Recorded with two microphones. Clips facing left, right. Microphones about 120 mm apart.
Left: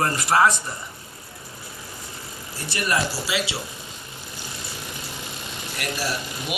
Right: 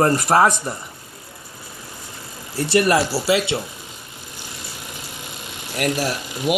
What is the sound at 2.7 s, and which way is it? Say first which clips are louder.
Speech: right 8 dB; 70° right (ahead or behind).